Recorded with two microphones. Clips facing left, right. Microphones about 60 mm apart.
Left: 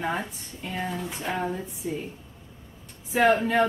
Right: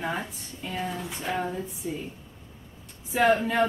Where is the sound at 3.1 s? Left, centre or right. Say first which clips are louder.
Left 1 dB; centre.